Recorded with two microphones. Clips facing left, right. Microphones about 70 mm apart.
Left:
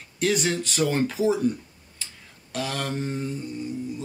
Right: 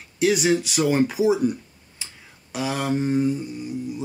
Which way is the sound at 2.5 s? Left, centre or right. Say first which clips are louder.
Right 5 dB; centre.